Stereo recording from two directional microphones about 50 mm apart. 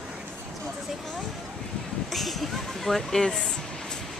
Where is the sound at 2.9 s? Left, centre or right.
Centre.